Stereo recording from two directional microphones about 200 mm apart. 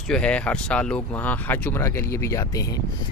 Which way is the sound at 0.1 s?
5° left (ahead or behind).